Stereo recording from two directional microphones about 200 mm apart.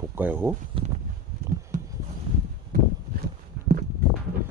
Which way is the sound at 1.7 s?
40° right (ahead or behind).